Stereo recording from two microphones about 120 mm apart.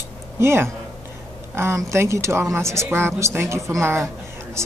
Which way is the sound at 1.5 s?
25° right (ahead or behind).